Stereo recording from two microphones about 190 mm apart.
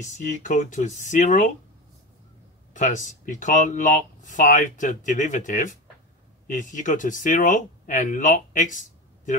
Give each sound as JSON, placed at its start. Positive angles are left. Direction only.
{"t": 0.4, "sound": "speech", "side_deg": 40}
{"t": 2.7, "sound": "speech", "side_deg": 40}